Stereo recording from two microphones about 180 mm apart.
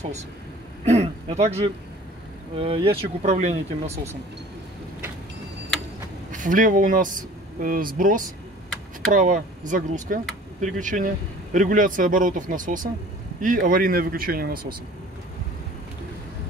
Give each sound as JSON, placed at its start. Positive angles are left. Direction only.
{"t": 0.8, "sound": "speech", "side_deg": -35}
{"t": 6.3, "sound": "speech", "side_deg": -45}